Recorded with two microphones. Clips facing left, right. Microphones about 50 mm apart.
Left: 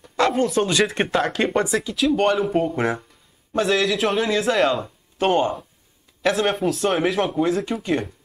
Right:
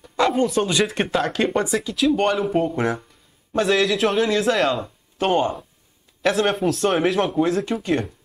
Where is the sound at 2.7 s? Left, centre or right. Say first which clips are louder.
Even; centre.